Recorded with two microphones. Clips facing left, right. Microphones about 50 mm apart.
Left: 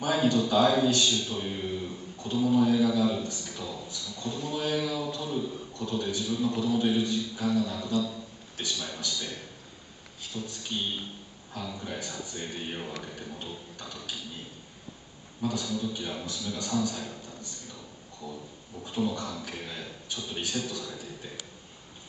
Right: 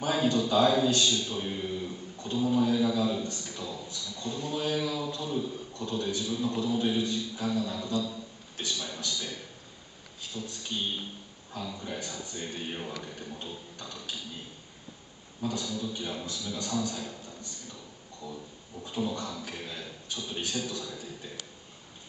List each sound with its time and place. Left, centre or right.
0.0 s a man's voice: centre
10.3 s a sound: centre
11.6 s a man's voice: centre
15.6 s a man's voice: centre
18.2 s a man's voice: centre